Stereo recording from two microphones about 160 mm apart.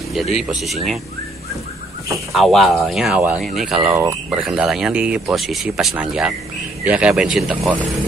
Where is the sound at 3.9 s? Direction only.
20° right (ahead or behind).